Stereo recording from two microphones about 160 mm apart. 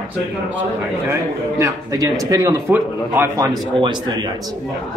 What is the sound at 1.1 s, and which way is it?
Speech, 20° right (ahead or behind).